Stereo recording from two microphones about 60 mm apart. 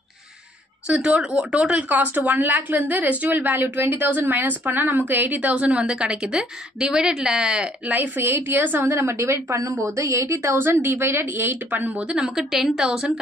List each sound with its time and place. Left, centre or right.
0.8 s a woman's voice: centre
5.5 s a woman's voice: centre
8.2 s a woman's voice: right
8.9 s speech: right
9.8 s a woman's voice: right
10.6 s a woman's voice: right
12.0 s a woman's voice: centre